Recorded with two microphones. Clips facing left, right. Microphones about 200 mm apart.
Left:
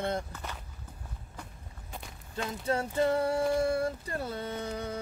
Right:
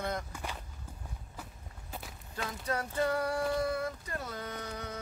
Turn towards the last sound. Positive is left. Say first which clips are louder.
# left 5 dB
turn(degrees=30)  # may be behind; listen again after turning